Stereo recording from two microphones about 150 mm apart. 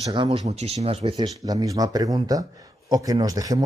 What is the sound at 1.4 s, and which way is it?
A man's voice, 25° right (ahead or behind).